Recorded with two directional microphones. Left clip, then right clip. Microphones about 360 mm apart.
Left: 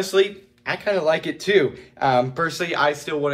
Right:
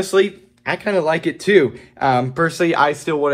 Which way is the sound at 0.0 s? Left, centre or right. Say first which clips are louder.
Right 3 dB; centre.